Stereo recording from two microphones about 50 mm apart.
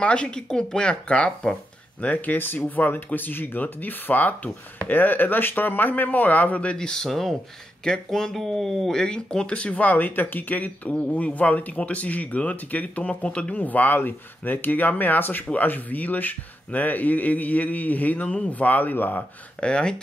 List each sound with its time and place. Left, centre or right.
0.0 s speech: left
2.3 s speech: left; by 9.0 s centre
9.0 s speech: centre; by 19.2 s left
19.6 s speech: centre